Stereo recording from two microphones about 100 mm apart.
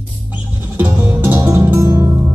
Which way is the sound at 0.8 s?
20° right (ahead or behind).